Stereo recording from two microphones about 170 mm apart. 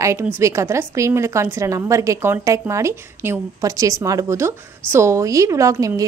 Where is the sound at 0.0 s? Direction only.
15° right (ahead or behind).